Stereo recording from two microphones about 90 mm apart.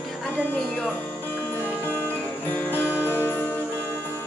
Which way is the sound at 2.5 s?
25° left (ahead or behind).